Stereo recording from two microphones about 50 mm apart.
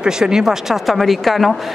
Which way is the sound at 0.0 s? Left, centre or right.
Centre.